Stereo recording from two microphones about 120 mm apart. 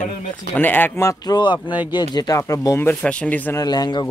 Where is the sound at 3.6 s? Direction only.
35° left (ahead or behind).